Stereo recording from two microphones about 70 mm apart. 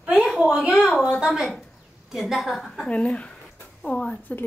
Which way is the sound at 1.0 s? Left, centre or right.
Centre.